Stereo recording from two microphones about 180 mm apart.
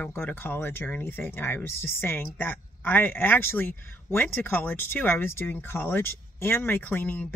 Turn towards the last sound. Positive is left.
turn(degrees=10)  # may be behind; listen again after turning